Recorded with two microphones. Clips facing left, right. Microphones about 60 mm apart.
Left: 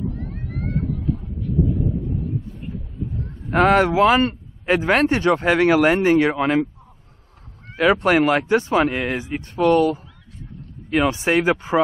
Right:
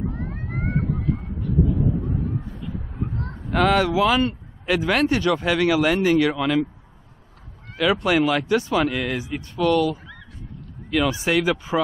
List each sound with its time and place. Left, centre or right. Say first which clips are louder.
0.2 s vehicle: right 1 dB; right
3.0 s honk: right 1 dB; right
3.4 s speech: left 3 dB; left
7.7 s speech: left 3 dB; left